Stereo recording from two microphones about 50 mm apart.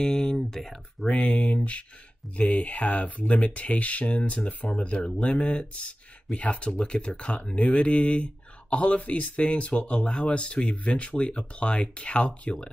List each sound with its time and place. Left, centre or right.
0.0 s speech: centre
1.2 s speech: left